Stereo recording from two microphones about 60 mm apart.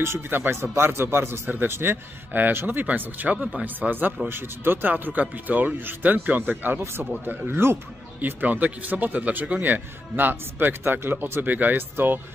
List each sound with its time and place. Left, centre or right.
0.0 s speech: right
6.8 s speech: right
8.2 s speech: right